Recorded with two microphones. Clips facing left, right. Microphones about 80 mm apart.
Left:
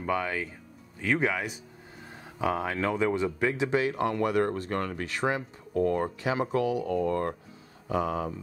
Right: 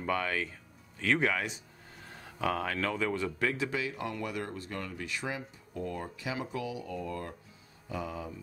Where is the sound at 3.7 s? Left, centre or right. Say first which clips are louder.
Left 9 dB; left.